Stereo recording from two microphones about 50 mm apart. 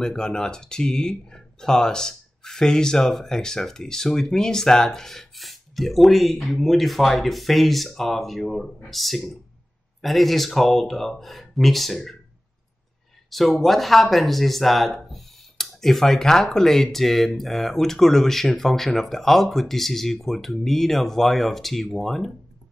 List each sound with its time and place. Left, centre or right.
0.0 s speech: centre
13.3 s speech: centre